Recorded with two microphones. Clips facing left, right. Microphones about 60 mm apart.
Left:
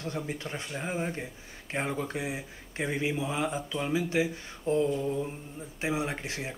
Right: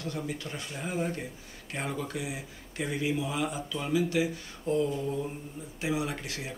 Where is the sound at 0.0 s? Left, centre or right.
Left.